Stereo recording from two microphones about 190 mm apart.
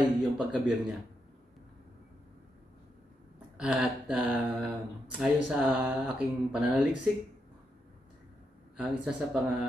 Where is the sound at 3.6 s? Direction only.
5° right (ahead or behind).